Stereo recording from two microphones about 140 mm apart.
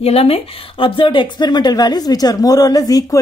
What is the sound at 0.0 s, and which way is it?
A woman's voice, 45° left (ahead or behind).